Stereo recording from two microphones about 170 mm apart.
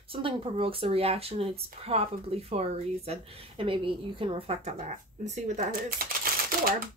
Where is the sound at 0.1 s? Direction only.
35° right (ahead or behind).